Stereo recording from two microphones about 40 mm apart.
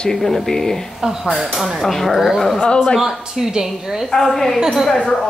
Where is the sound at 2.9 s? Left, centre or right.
Centre.